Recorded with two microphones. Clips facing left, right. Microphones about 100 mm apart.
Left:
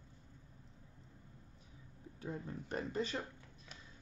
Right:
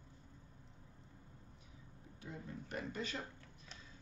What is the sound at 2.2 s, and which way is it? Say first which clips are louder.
Speech: left 5 dB; 35° left (ahead or behind).